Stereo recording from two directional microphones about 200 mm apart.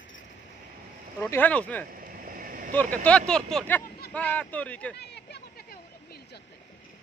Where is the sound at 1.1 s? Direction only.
10° left (ahead or behind).